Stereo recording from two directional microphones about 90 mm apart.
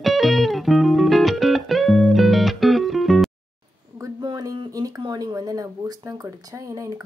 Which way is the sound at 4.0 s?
45° right (ahead or behind).